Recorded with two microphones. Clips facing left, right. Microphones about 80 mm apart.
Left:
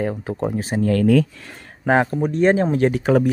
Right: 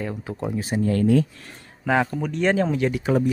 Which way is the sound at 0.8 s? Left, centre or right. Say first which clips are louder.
Left 3 dB; left.